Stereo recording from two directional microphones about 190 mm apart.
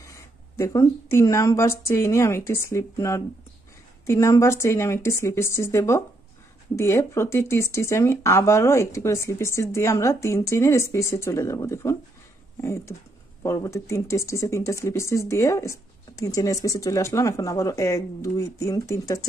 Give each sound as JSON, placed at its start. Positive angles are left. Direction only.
{"t": 0.0, "sound": "speech", "side_deg": 15}